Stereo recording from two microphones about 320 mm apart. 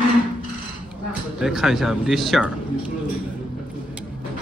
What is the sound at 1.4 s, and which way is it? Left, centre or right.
Speech, centre.